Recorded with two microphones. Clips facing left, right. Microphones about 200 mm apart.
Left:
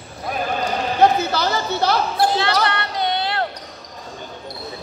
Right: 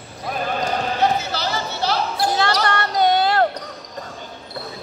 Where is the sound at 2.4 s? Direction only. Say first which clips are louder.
Even; 45° right (ahead or behind).